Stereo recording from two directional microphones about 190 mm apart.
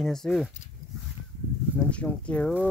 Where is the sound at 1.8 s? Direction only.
5° left (ahead or behind).